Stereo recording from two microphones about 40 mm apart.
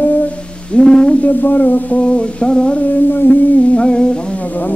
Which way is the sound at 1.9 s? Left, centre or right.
Left.